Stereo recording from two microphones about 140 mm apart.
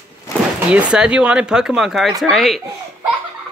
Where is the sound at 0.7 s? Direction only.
5° right (ahead or behind).